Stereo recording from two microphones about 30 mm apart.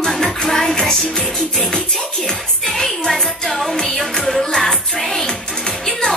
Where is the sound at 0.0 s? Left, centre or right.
Centre.